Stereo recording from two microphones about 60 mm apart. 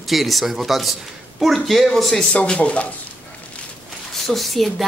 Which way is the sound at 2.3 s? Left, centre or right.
Centre.